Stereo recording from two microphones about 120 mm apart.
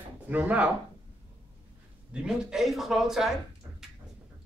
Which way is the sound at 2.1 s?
5° right (ahead or behind).